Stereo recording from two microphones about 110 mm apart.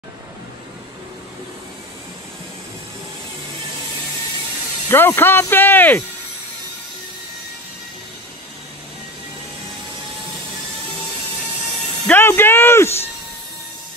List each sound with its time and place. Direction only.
4.8 s speech: 20° left (ahead or behind)
12.1 s speech: 20° left (ahead or behind)